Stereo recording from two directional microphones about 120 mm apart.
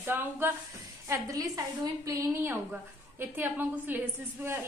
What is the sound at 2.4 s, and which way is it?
A woman's voice, 15° right (ahead or behind).